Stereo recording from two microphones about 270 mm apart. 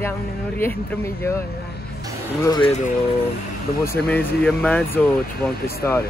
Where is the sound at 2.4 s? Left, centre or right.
Centre.